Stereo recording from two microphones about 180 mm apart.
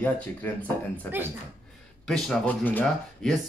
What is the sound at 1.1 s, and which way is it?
Speech, 10° left (ahead or behind).